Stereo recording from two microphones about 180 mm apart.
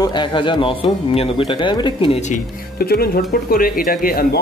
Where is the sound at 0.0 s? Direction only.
25° left (ahead or behind).